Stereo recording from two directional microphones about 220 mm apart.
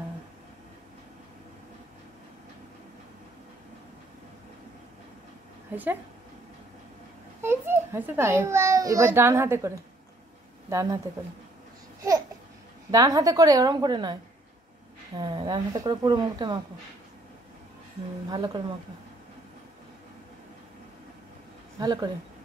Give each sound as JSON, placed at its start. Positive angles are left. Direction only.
{"t": 7.4, "sound": "a child's voice", "side_deg": -10}
{"t": 10.7, "sound": "a woman's voice", "side_deg": -15}
{"t": 12.9, "sound": "a woman's voice", "side_deg": -15}
{"t": 15.1, "sound": "a woman's voice", "side_deg": -20}
{"t": 18.3, "sound": "a woman's voice", "side_deg": -20}
{"t": 21.7, "sound": "a woman's voice", "side_deg": -20}